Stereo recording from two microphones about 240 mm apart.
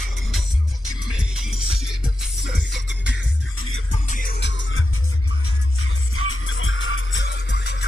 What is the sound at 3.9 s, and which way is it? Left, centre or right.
Music, left.